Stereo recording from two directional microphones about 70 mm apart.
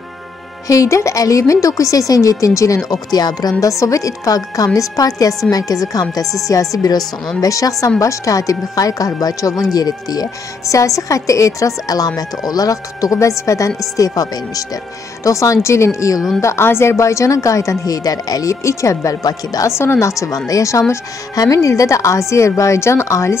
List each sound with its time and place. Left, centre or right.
0.7 s a woman's voice: left
2.9 s speech: left
3.6 s a woman's voice: left
13.9 s a woman's voice: left
19.7 s a woman's voice: left